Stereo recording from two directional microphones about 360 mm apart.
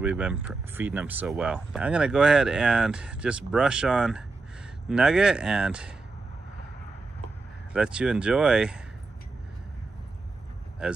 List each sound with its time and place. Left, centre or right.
0.0 s speech: centre
7.7 s speech: centre
10.8 s speech: centre